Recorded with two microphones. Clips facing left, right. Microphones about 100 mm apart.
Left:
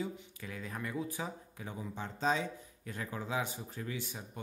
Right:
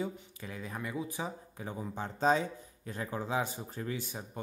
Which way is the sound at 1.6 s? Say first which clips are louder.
Right 4 dB; 35° right (ahead or behind).